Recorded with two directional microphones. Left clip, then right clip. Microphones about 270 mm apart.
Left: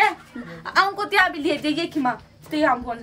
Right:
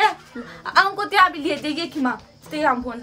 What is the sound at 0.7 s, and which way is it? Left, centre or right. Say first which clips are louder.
Speech: right 2 dB; centre.